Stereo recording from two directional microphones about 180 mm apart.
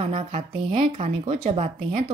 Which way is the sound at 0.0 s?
35° right (ahead or behind).